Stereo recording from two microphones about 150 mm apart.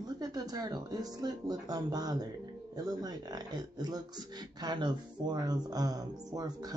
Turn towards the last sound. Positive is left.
turn(degrees=-25)  # may be behind; listen again after turning